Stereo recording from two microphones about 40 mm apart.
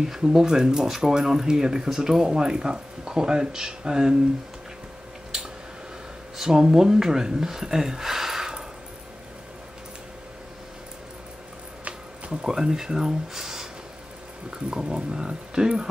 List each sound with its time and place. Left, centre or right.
0.0 s speech: centre
6.3 s speech: centre
12.3 s speech: centre
14.7 s speech: right